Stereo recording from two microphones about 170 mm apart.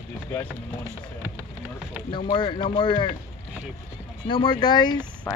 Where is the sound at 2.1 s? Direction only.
30° left (ahead or behind).